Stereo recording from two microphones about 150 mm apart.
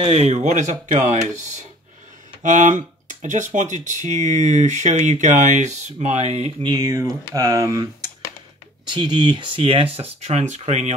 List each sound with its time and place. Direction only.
0.0 s speech: 45° right (ahead or behind)
2.4 s speech: 55° right (ahead or behind)
6.6 s speech: 25° right (ahead or behind)
8.8 s speech: 30° right (ahead or behind); by 11.0 s 50° right (ahead or behind)